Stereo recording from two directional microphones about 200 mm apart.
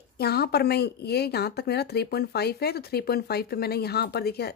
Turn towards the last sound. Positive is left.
turn(degrees=50)  # may be behind; listen again after turning